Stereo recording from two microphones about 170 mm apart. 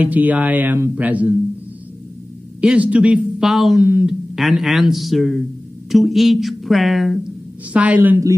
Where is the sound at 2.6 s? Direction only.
5° right (ahead or behind).